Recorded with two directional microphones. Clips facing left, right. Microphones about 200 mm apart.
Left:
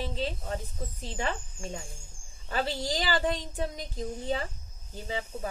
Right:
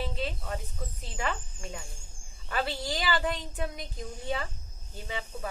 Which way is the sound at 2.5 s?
35° left (ahead or behind).